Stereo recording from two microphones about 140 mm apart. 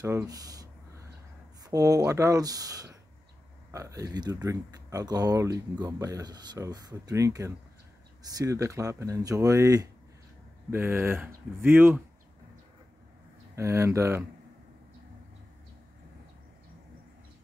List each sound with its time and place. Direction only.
0.0 s a sound: 25° right (ahead or behind)
1.6 s speech: 25° right (ahead or behind)
13.6 s speech: 20° right (ahead or behind)